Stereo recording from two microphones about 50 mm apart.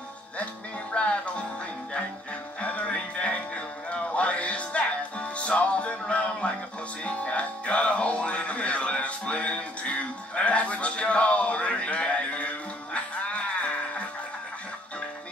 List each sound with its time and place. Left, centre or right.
0.9 s music: left
2.6 s music: left